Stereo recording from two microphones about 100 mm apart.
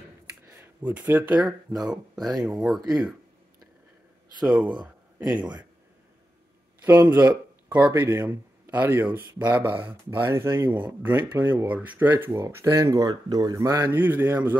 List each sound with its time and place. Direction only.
0.5 s speech: 20° right (ahead or behind); by 2.3 s centre (ahead or behind)
2.4 s speech: 15° right (ahead or behind)
6.8 s speech: 20° right (ahead or behind)
7.9 s speech: 25° right (ahead or behind)